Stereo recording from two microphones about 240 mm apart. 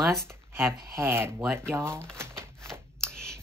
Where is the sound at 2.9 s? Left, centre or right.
Centre.